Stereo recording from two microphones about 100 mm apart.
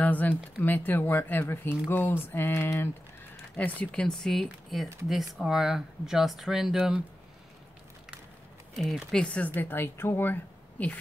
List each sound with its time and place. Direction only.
0.0 s speech: 15° left (ahead or behind); by 7.0 s 5° right (ahead or behind)
8.7 s speech: centre (ahead or behind); by 11.0 s 15° left (ahead or behind)